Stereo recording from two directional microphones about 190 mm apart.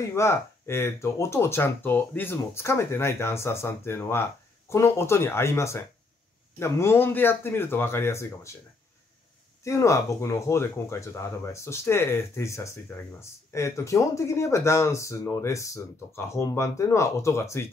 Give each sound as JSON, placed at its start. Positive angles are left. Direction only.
{"t": 0.1, "sound": "speech", "side_deg": 15}
{"t": 9.7, "sound": "speech", "side_deg": 15}